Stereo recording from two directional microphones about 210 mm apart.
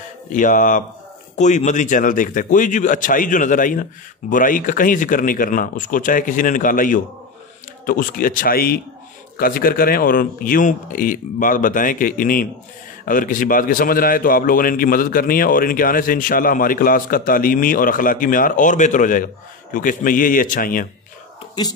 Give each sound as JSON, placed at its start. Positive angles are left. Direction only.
{"t": 0.3, "sound": "a man's voice", "side_deg": 40}